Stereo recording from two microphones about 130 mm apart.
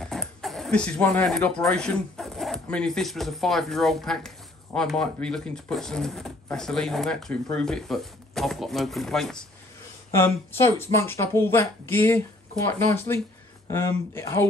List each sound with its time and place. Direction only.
0.0 s speech: centre (ahead or behind)
10.1 s speech: 20° left (ahead or behind)